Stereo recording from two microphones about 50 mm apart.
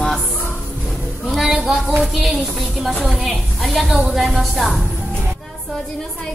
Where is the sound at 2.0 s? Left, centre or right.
Centre.